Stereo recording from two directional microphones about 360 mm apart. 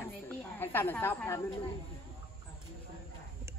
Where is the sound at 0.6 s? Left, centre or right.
Centre.